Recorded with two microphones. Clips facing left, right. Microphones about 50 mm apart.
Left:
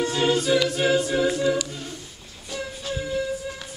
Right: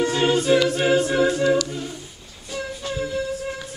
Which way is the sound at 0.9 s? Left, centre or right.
Right.